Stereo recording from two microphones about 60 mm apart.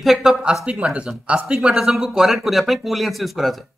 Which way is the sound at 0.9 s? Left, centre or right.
Centre.